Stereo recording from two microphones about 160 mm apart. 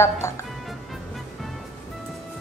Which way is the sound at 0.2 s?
15° left (ahead or behind).